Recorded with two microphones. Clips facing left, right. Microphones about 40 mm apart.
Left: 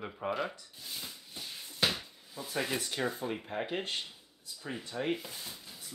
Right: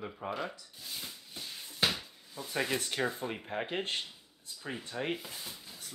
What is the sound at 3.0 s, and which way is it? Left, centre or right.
Speech, right.